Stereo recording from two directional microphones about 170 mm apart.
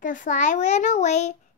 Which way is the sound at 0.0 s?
50° left (ahead or behind).